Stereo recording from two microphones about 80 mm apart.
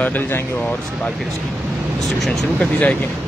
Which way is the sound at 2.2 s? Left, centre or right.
Centre.